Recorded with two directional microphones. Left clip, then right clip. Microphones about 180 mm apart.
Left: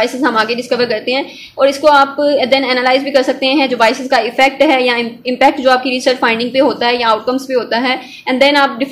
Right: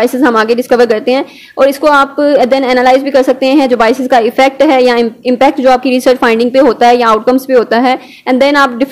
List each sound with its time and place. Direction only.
0.0 s a woman's voice: 45° right (ahead or behind)